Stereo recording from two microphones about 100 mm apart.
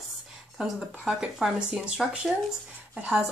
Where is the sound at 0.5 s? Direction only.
5° right (ahead or behind).